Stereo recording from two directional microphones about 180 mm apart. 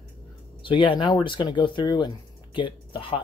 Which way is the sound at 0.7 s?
30° left (ahead or behind).